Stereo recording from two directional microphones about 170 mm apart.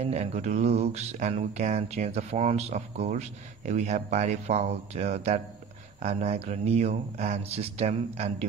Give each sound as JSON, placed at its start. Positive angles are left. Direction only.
{"t": 0.0, "sound": "speech", "side_deg": -40}